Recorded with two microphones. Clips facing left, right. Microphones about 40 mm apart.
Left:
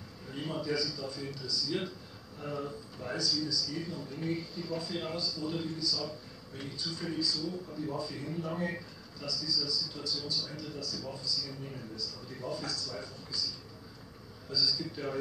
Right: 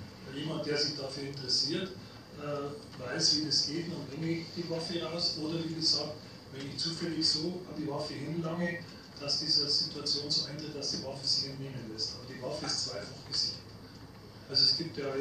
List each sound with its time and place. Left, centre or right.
0.3 s a man's voice: centre